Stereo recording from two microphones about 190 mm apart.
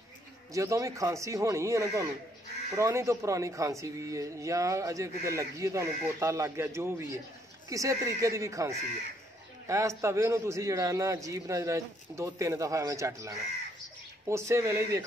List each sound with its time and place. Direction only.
0.5 s speech: 15° right (ahead or behind)